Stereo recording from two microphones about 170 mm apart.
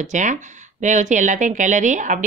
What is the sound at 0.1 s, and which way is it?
A woman's voice, 45° right (ahead or behind).